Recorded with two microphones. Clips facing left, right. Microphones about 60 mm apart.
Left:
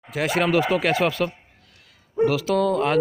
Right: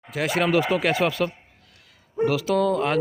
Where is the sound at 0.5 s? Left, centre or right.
Centre.